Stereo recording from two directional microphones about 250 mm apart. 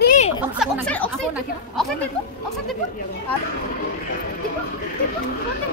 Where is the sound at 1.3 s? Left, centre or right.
Centre.